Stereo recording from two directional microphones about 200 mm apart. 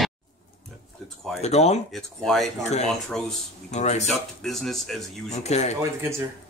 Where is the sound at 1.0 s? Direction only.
Centre (ahead or behind).